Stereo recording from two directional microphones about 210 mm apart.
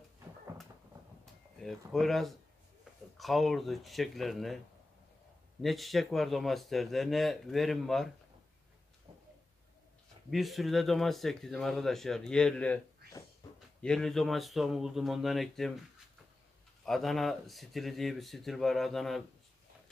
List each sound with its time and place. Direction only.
1.6 s speech: centre (ahead or behind)
5.6 s speech: centre (ahead or behind)
10.3 s speech: centre (ahead or behind)
16.8 s speech: centre (ahead or behind)